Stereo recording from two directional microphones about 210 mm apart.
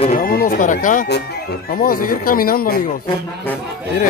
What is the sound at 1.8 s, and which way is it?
Speech, 45° left (ahead or behind).